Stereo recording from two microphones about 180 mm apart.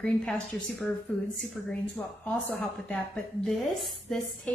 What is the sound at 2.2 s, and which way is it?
A woman's voice, 10° left (ahead or behind).